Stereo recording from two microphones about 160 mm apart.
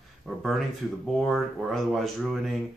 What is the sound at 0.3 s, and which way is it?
Speech, centre (ahead or behind).